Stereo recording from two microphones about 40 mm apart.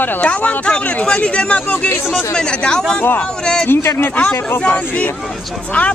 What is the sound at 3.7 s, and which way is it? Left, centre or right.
Speech, left.